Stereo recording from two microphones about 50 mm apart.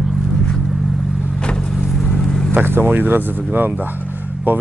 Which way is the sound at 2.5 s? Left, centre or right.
Right.